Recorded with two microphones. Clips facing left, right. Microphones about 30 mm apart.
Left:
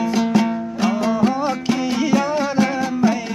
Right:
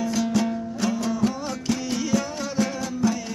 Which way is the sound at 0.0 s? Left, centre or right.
Left.